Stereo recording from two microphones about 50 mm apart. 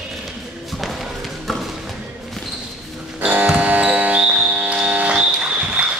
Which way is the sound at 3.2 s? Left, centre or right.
Right.